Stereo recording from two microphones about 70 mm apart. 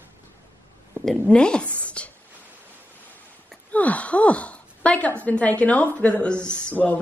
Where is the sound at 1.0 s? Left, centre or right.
Centre.